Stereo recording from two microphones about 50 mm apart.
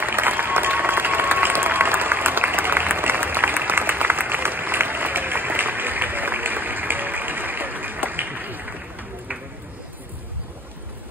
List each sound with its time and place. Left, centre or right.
0.0 s applause: right